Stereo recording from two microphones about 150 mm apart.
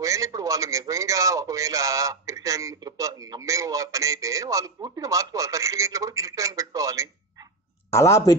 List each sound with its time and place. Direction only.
0.0 s a man's voice: 20° right (ahead or behind)
7.9 s speech: 20° left (ahead or behind)